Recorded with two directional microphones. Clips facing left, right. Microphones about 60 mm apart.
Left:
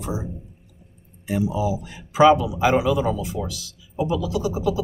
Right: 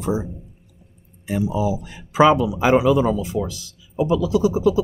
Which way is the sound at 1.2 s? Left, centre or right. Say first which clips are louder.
Right 1 dB; right.